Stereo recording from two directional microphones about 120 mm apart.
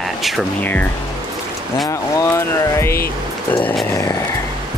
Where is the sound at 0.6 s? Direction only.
15° left (ahead or behind).